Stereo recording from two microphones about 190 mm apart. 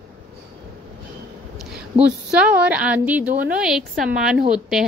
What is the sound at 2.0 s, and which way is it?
A woman's voice, 5° right (ahead or behind).